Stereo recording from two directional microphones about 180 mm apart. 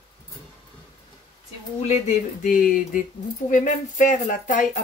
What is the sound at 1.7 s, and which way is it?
Speech, 40° left (ahead or behind).